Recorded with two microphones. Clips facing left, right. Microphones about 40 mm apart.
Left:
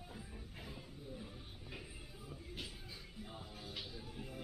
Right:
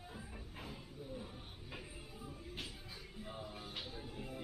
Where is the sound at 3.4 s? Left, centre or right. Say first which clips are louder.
Right 2 dB; right.